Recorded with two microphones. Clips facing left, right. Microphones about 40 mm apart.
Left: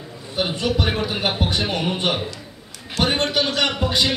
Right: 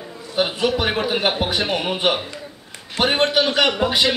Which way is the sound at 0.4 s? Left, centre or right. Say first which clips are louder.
Right 2 dB; centre.